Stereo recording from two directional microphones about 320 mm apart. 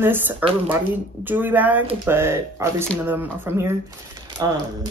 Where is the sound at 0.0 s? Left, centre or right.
Centre.